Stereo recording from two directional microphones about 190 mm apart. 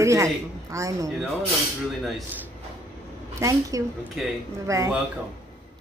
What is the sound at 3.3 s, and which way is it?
Speech, 15° right (ahead or behind).